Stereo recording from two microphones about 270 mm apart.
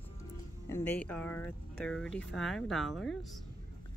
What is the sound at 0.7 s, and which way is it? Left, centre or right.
Speech, centre.